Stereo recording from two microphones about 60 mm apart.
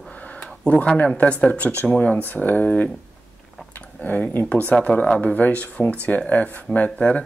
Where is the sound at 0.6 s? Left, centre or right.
Left.